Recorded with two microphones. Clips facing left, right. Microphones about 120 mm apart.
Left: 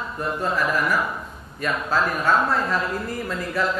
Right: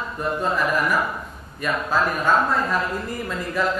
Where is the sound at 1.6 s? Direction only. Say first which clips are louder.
Right 1 dB; 15° right (ahead or behind).